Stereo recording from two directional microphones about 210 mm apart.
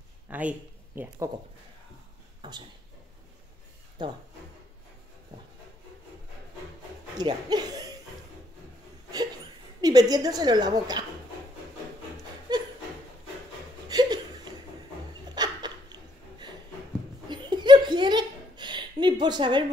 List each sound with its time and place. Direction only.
0.3 s speech: 5° right (ahead or behind)
4.0 s a woman's voice: 20° right (ahead or behind)
7.2 s speech: 20° right (ahead or behind)
9.8 s a woman's voice: 20° right (ahead or behind)
12.5 s a sound: 20° right (ahead or behind)
13.8 s chuckle: 20° right (ahead or behind)
15.2 s dog: 20° right (ahead or behind)
17.3 s laughter: 20° right (ahead or behind)